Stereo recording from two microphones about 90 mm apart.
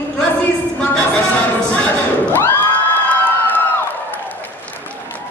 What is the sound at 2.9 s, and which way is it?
Cheering, 20° left (ahead or behind).